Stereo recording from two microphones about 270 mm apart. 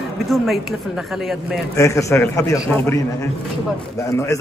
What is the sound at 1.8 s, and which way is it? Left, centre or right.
A man's voice, centre.